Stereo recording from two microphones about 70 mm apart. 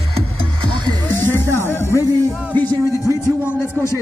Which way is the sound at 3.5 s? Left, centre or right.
Left.